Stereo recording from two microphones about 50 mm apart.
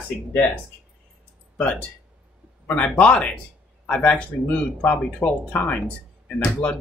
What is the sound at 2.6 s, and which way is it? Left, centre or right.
Speech, left.